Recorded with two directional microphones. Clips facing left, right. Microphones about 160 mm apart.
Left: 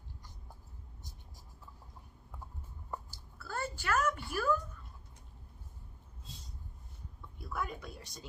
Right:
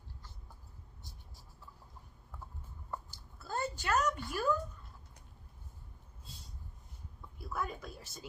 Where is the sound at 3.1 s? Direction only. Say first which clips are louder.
Right 2 dB; 20° right (ahead or behind).